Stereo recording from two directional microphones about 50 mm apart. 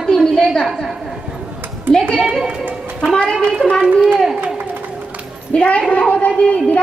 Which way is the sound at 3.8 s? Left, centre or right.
Right.